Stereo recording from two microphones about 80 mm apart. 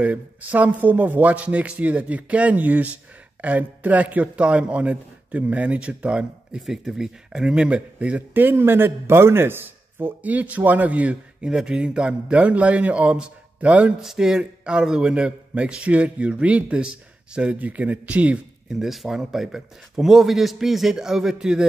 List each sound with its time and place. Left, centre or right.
0.0 s a man's voice: centre
18.7 s speech: centre